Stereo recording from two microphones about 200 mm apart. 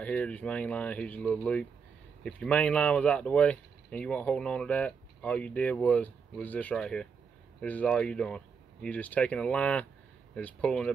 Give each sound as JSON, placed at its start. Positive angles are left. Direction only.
{"t": 0.0, "sound": "speech", "side_deg": 5}